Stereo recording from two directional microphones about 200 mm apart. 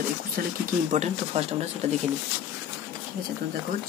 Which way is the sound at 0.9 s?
35° right (ahead or behind).